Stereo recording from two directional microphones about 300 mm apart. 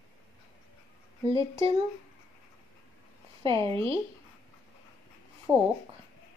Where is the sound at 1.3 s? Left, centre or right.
Centre.